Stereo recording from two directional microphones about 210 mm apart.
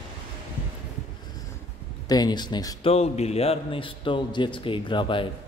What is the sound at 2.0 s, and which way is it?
Speech, 20° left (ahead or behind).